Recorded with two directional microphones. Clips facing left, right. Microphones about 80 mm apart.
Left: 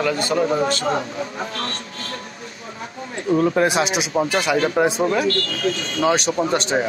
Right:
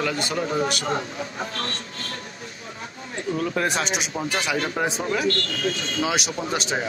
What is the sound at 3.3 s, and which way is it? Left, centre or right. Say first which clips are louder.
Speech: left 8 dB; left.